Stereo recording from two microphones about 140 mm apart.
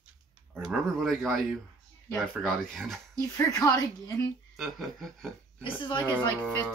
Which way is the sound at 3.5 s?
25° left (ahead or behind).